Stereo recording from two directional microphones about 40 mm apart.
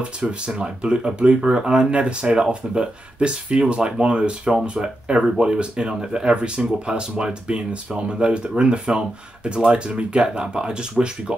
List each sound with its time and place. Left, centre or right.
0.5 s speech: right